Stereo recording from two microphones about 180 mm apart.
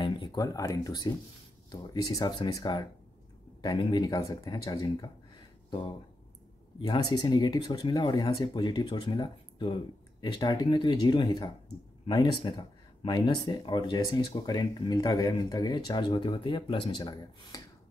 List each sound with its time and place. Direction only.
0.0 s speech: 25° left (ahead or behind)